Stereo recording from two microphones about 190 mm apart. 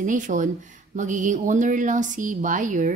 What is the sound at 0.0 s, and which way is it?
Speech, 40° right (ahead or behind).